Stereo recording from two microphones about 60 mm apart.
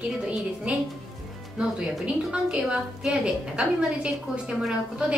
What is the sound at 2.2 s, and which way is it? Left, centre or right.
A woman's voice, centre.